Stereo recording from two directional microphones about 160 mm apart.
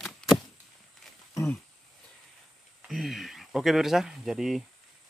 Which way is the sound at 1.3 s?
20° left (ahead or behind).